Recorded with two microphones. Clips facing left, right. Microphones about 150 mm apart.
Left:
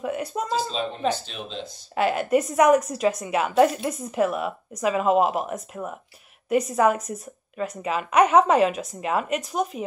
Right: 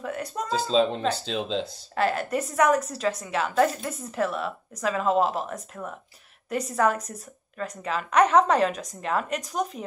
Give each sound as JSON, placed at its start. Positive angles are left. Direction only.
{"t": 0.0, "sound": "speech", "side_deg": 10}
{"t": 0.7, "sound": "speech", "side_deg": -90}
{"t": 2.0, "sound": "a woman's voice", "side_deg": 10}